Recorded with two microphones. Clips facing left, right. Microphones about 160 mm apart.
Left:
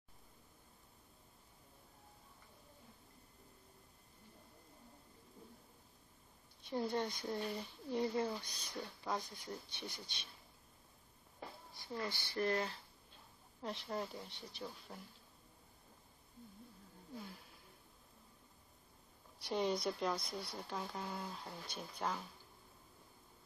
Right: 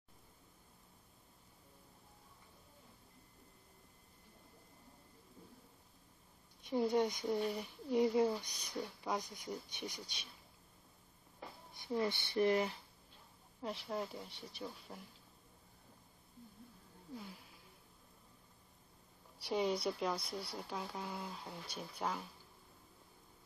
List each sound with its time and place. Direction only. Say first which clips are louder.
6.9 s speech: right 5 dB; 20° right (ahead or behind)
7.2 s speech: right 5 dB; centre (ahead or behind)
7.5 s speech: right 5 dB; 15° right (ahead or behind)
11.7 s speech: right 7 dB; 20° right (ahead or behind)
13.6 s speech: right 1 dB; 5° right (ahead or behind)
17.2 s speech: even; centre (ahead or behind)
19.4 s speech: right 1 dB; 5° right (ahead or behind)